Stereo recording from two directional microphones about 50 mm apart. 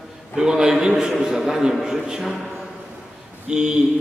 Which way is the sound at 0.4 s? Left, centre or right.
Centre.